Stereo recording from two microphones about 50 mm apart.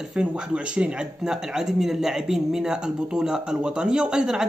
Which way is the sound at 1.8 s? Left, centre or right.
Centre.